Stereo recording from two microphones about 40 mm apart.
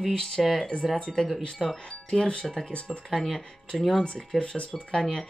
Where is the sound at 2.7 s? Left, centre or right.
Left.